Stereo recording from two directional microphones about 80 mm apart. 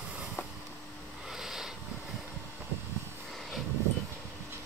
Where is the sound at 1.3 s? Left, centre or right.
Centre.